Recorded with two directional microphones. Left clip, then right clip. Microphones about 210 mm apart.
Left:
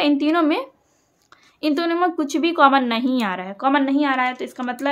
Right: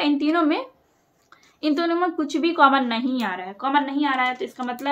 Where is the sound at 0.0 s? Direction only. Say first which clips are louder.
Left 3 dB; 30° left (ahead or behind).